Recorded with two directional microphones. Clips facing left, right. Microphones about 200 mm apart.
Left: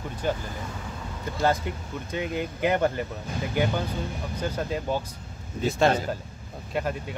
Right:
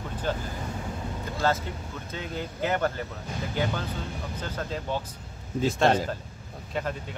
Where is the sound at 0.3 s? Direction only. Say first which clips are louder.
Left 2 dB; 10° left (ahead or behind).